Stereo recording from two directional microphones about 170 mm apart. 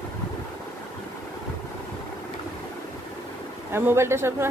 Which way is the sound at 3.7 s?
15° right (ahead or behind).